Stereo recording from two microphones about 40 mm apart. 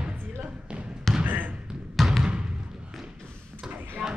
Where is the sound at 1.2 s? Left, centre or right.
Right.